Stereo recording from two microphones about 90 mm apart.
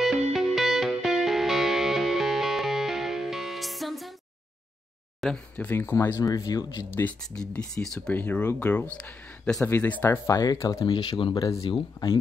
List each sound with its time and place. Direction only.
0.0 s music: 5° right (ahead or behind)
5.2 s speech: 10° left (ahead or behind)
5.7 s speech: 25° left (ahead or behind)
6.2 s speech: 45° left (ahead or behind)
6.9 s speech: 25° left (ahead or behind)
7.8 s speech: 5° left (ahead or behind)
8.1 s speech: 20° left (ahead or behind)
9.7 s speech: 20° left (ahead or behind)
10.2 s speech: 45° left (ahead or behind)
10.9 s speech: 60° left (ahead or behind)
11.3 s speech: 40° left (ahead or behind)
11.6 s speech: 70° left (ahead or behind)